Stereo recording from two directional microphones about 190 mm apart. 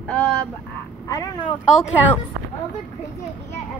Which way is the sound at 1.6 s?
5° right (ahead or behind).